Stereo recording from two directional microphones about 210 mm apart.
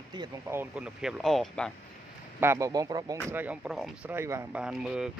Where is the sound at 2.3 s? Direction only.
10° right (ahead or behind).